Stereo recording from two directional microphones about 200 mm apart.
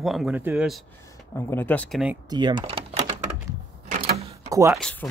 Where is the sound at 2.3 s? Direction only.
20° right (ahead or behind).